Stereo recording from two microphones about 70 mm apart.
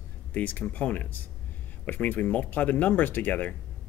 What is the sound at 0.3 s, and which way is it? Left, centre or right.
Speech, left.